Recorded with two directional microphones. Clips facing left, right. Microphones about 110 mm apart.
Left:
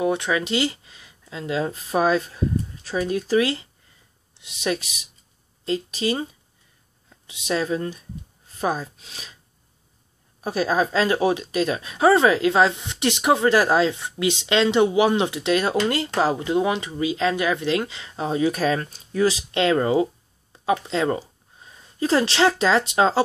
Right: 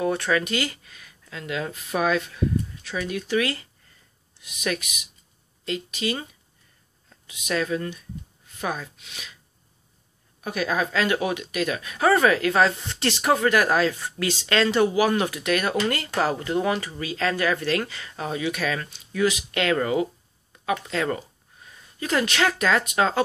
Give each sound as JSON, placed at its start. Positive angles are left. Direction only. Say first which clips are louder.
{"t": 0.0, "sound": "speech", "louder": "left 1 dB", "side_deg": 20}
{"t": 7.2, "sound": "speech", "louder": "left 2 dB", "side_deg": 25}
{"t": 10.4, "sound": "speech", "louder": "left 4 dB", "side_deg": 30}